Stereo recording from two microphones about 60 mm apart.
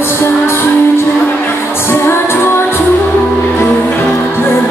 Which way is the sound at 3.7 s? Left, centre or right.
Left.